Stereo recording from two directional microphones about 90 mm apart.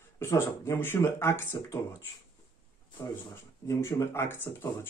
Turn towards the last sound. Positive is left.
turn(degrees=25)  # may be behind; listen again after turning